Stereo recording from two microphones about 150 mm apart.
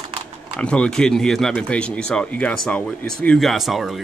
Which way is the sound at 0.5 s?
5° left (ahead or behind).